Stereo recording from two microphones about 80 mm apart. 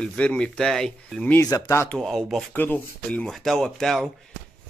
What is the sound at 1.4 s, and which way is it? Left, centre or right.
Speech, left.